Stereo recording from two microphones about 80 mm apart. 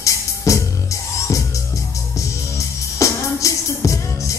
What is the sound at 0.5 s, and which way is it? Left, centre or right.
Music, left.